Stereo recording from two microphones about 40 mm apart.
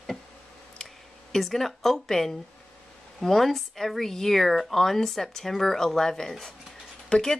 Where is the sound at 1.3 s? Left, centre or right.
Centre.